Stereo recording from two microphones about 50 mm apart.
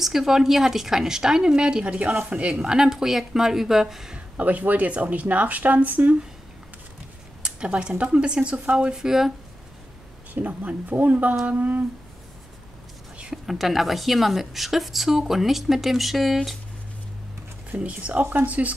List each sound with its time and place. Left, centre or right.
0.0 s a woman's voice: centre
4.4 s speech: right
7.4 s a sound: centre
8.0 s speech: right
10.3 s speech: right
13.5 s a woman's voice: centre
17.6 s speech: right